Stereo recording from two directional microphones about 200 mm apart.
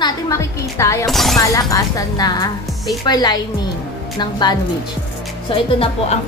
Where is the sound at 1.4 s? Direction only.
15° left (ahead or behind).